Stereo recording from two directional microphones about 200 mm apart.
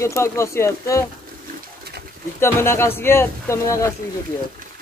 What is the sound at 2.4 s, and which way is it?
Speech, 10° left (ahead or behind).